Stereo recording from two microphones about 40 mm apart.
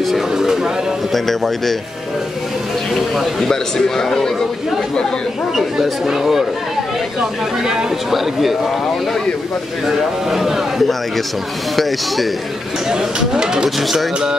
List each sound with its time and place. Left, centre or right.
0.3 s speech: centre
1.1 s a man's voice: centre
2.9 s a man's voice: centre
3.4 s a man's voice: centre
5.5 s speech: centre
7.9 s a man's voice: centre
9.8 s a man's voice: centre
12.8 s speech: centre
13.7 s a man's voice: centre